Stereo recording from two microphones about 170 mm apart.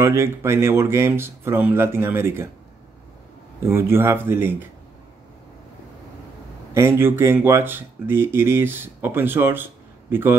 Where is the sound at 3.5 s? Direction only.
15° right (ahead or behind).